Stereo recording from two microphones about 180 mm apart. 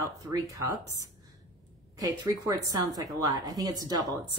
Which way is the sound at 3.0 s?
20° right (ahead or behind).